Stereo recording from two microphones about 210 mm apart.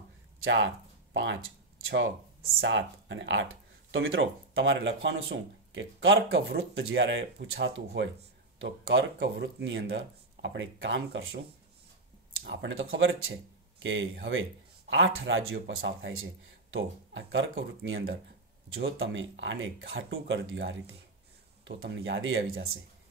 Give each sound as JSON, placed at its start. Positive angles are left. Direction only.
{"t": 0.4, "sound": "speech", "side_deg": -65}
{"t": 12.4, "sound": "speech", "side_deg": -65}